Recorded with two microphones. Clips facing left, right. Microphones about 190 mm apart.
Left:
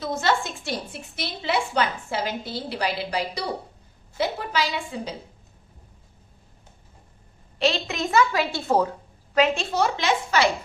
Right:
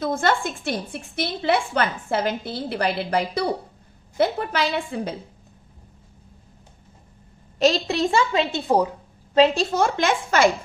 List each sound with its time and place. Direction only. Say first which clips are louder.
0.0 s a woman's voice: right 2 dB; 50° right (ahead or behind)
7.5 s a woman's voice: right 5 dB; 40° right (ahead or behind); by 8.9 s 15° right (ahead or behind)
9.3 s a woman's voice: right 4 dB; 35° right (ahead or behind); by 10.5 s 50° right (ahead or behind)